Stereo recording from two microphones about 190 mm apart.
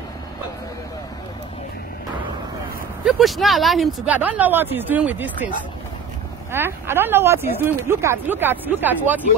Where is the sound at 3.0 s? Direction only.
Centre (ahead or behind).